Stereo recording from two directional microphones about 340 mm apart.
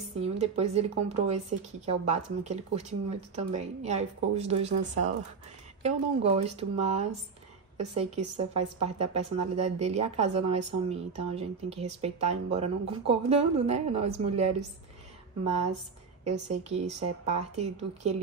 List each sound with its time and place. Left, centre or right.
0.2 s speech: centre
16.3 s speech: centre